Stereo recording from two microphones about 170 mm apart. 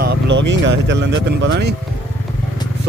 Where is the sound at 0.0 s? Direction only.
80° right.